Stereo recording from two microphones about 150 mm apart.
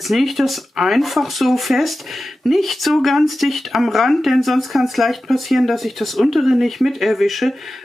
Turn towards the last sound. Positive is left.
turn(degrees=0)  # may be behind; listen again after turning